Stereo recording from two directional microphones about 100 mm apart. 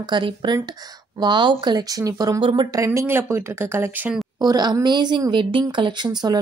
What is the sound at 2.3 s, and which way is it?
Speech, 50° right (ahead or behind).